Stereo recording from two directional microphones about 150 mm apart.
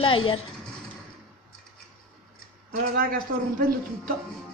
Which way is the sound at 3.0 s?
75° right (ahead or behind).